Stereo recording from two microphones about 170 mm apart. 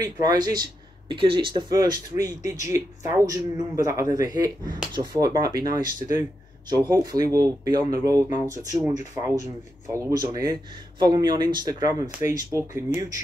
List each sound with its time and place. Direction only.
0.0 s speech: 20° right (ahead or behind)